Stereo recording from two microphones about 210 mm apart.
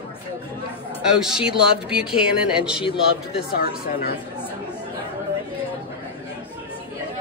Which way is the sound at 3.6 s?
45° left (ahead or behind).